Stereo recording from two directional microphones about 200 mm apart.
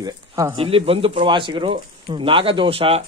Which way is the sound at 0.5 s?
30° right (ahead or behind).